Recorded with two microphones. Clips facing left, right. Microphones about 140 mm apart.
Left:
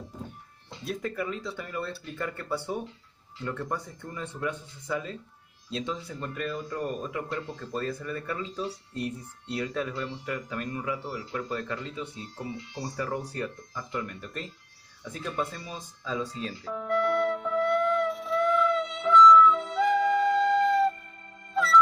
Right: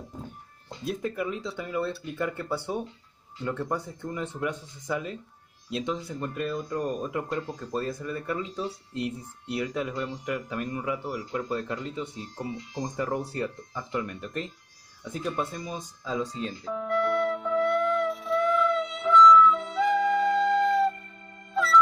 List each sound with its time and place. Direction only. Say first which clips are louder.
0.8 s speech: right 2 dB; 20° right (ahead or behind)
3.6 s speech: right 3 dB; 20° right (ahead or behind)
12.0 s speech: right 2 dB; 40° right (ahead or behind)
12.8 s speech: right 3 dB; 20° right (ahead or behind)
16.3 s music: right 2 dB; 5° left (ahead or behind)